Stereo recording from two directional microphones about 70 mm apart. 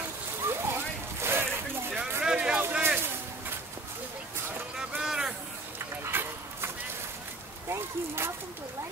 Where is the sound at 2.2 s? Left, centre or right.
Centre.